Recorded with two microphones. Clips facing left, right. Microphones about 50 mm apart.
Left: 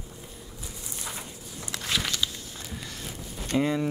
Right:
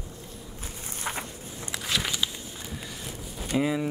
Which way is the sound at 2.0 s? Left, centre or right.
Centre.